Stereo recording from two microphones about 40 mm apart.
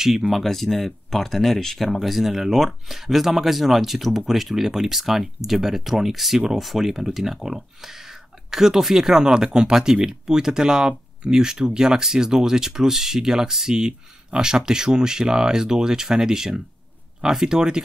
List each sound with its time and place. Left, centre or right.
0.0 s speech: centre